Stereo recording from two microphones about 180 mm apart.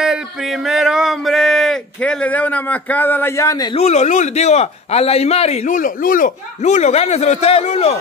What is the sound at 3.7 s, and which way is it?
Speech, 35° left (ahead or behind).